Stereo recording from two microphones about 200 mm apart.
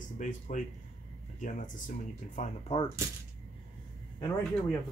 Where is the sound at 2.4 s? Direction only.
30° left (ahead or behind).